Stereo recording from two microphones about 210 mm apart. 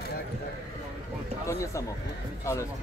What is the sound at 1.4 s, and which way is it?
Speech, 15° left (ahead or behind).